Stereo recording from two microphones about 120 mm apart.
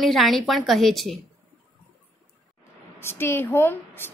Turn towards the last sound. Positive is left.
turn(degrees=20)  # may be behind; listen again after turning